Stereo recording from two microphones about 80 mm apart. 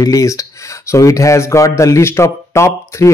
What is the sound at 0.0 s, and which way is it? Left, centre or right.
A man's voice, left.